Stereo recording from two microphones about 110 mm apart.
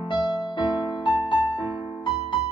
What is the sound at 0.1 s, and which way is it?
Music, 45° left (ahead or behind).